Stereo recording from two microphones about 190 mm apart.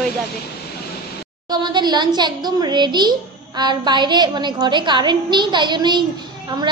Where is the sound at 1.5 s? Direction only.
20° right (ahead or behind).